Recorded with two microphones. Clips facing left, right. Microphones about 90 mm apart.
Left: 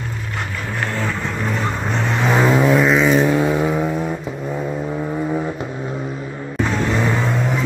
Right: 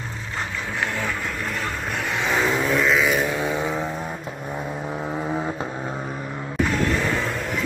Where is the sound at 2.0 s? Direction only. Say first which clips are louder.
Left 6 dB; 15° left (ahead or behind).